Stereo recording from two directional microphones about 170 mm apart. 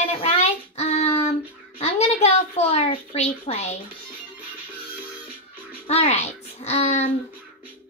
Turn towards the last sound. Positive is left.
turn(degrees=40)  # may be behind; listen again after turning